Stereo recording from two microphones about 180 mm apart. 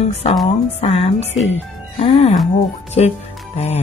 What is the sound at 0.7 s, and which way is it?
Speech, 35° left (ahead or behind).